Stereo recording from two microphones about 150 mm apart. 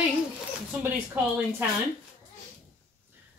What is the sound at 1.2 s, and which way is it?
Speech, 10° right (ahead or behind).